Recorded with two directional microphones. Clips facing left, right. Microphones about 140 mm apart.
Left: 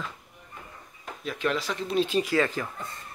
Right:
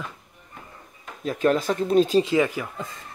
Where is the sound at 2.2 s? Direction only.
15° right (ahead or behind).